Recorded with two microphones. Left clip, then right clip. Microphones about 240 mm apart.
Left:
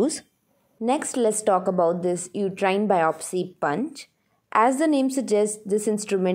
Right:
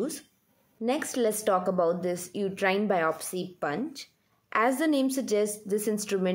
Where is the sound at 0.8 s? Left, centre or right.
Left.